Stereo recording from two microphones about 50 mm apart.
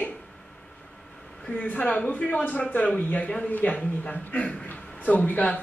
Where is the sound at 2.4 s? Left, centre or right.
Left.